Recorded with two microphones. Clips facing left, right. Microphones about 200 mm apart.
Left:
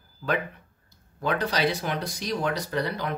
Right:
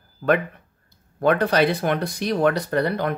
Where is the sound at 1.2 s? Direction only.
55° right (ahead or behind).